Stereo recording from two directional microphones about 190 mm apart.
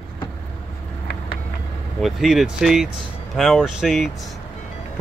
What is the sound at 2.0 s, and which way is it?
Speech, centre (ahead or behind).